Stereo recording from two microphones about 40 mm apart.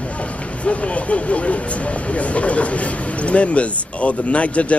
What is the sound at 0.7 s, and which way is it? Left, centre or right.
Speech, left.